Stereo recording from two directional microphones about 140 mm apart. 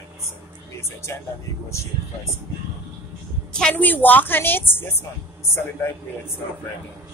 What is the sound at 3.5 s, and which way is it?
A woman's voice, 10° left (ahead or behind).